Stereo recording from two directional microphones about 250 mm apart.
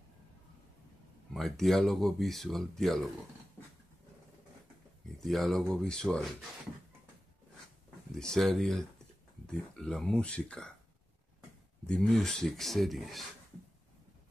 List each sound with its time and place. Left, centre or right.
1.3 s speech: centre
5.2 s speech: centre
8.1 s speech: centre
11.8 s speech: centre